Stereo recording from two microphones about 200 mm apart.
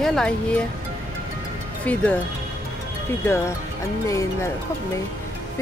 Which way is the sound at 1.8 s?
5° left (ahead or behind).